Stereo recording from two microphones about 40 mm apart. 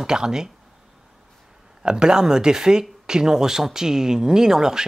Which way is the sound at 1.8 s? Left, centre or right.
Centre.